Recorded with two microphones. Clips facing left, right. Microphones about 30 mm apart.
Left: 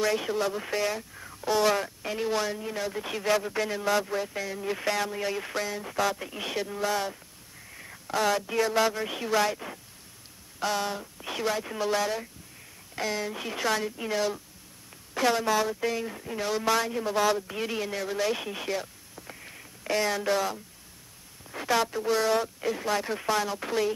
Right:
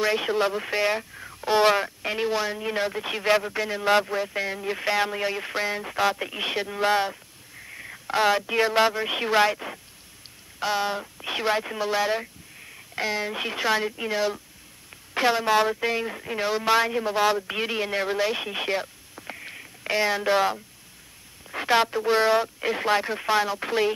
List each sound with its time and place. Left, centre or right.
0.0 s speech: right
1.1 s a sound: centre
1.5 s speech: right
2.2 s speech: centre
2.6 s speech: right
2.9 s speech: right
3.4 s a man's voice: centre; by 7.1 s right
7.6 s a sound: right
8.1 s speech: right
18.6 s a sound: right
21.5 s speech: right
23.0 s speech: right